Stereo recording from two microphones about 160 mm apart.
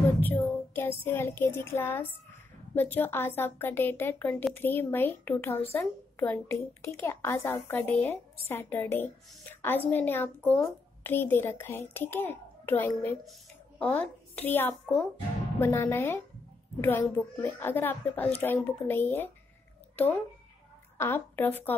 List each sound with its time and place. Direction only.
0.2 s a woman's voice: 10° left (ahead or behind)
21.0 s a woman's voice: 15° left (ahead or behind)